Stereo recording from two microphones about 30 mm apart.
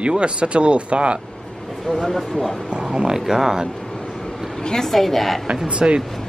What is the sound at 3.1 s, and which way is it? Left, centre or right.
Speech, centre.